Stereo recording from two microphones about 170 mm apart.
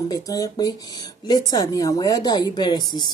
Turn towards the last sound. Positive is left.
turn(degrees=25)  # may be behind; listen again after turning